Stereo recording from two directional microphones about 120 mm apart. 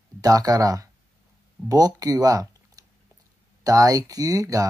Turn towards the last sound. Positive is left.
turn(degrees=-30)  # may be behind; listen again after turning